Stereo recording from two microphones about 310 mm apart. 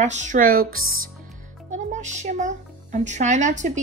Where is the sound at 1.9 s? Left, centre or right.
Right.